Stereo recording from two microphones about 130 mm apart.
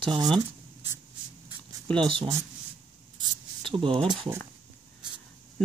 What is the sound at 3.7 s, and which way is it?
Speech, 40° right (ahead or behind).